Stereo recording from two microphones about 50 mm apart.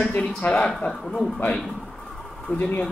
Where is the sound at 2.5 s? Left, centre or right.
Left.